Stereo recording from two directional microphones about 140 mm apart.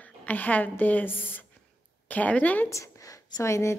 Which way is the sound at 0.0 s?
10° left (ahead or behind).